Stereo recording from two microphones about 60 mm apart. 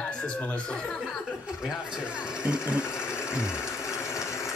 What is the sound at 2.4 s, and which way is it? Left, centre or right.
Speech, centre.